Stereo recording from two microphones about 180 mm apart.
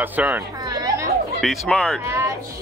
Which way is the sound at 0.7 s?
20° right (ahead or behind).